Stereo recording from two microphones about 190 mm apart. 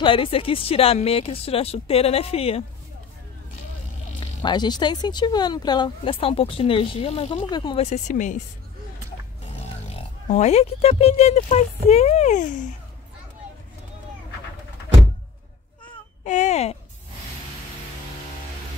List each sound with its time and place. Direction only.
0.0 s speech: 30° left (ahead or behind)
4.2 s speech: 25° left (ahead or behind); by 8.4 s 40° left (ahead or behind)
9.5 s speech: 30° left (ahead or behind)
16.3 s speech: 40° left (ahead or behind)